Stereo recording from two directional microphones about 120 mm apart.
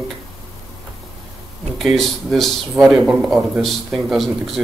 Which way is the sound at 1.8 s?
Centre (ahead or behind).